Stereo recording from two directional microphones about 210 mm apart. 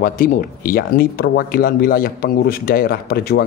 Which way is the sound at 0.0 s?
40° left (ahead or behind).